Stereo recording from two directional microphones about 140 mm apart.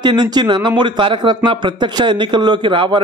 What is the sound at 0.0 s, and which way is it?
A man's voice, 30° right (ahead or behind).